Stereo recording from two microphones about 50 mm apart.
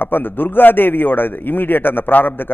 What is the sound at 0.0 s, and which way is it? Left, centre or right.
A man's voice, left.